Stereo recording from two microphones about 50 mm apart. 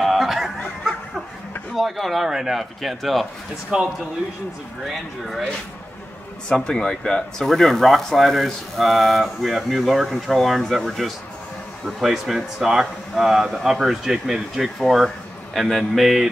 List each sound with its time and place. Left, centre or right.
0.0 s a sound: centre
1.8 s speech: centre
4.8 s speech: centre
6.5 s speech: centre
7.4 s speech: centre